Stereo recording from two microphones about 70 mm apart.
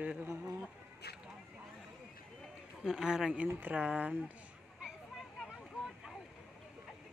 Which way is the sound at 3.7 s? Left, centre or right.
Centre.